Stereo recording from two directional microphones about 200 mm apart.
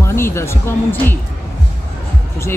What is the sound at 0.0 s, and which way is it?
Speech, 15° left (ahead or behind).